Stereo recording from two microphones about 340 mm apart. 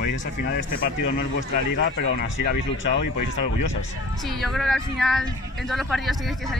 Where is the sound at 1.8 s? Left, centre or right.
Left.